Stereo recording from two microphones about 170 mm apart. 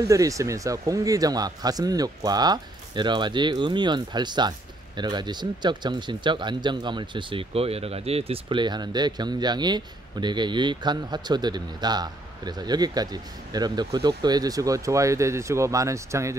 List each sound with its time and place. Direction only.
0.1 s a man's voice: 20° right (ahead or behind)